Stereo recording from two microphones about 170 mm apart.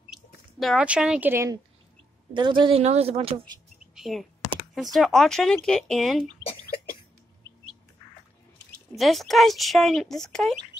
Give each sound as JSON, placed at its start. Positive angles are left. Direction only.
{"t": 0.1, "sound": "speech", "side_deg": 0}
{"t": 2.3, "sound": "speech", "side_deg": -30}
{"t": 3.9, "sound": "speech", "side_deg": 0}
{"t": 8.9, "sound": "speech", "side_deg": 0}